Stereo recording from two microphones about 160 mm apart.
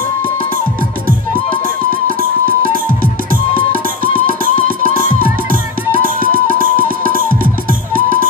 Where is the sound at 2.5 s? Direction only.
60° right (ahead or behind).